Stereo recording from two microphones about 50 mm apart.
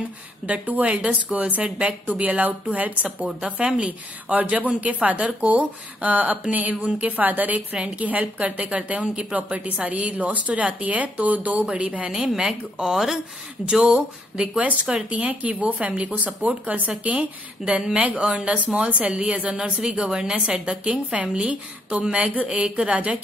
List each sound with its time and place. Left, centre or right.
0.5 s a woman's voice: right
3.3 s a woman's voice: centre
14.4 s a woman's voice: right